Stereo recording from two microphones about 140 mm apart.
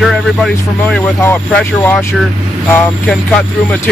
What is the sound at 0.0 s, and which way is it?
Speech, centre (ahead or behind).